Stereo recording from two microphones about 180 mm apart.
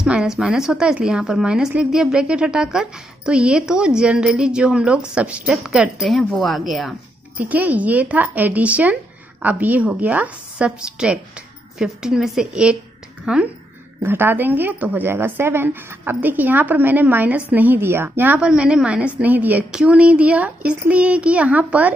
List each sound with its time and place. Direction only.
0.0 s a woman's voice: 5° right (ahead or behind)